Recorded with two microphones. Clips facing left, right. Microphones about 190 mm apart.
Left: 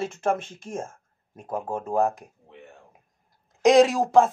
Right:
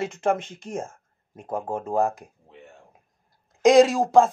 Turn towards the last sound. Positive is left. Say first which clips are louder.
# right 1 dB
turn(degrees=0)  # may be behind; listen again after turning